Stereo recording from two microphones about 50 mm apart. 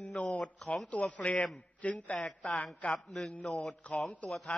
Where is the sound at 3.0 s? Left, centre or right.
Centre.